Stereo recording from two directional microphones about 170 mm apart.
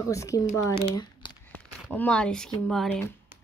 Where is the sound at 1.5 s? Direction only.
10° left (ahead or behind).